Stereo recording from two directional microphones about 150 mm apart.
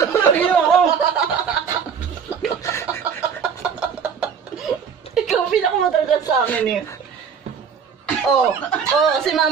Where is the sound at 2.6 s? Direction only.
20° left (ahead or behind).